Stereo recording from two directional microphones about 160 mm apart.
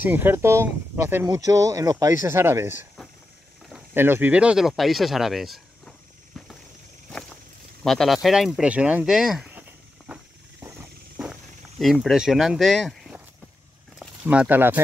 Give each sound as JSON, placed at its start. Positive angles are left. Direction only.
{"t": 0.0, "sound": "speech", "side_deg": -10}
{"t": 3.9, "sound": "speech", "side_deg": -15}
{"t": 7.8, "sound": "speech", "side_deg": 0}
{"t": 11.8, "sound": "speech", "side_deg": 0}